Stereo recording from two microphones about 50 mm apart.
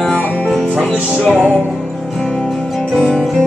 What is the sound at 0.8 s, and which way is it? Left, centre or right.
Music, centre.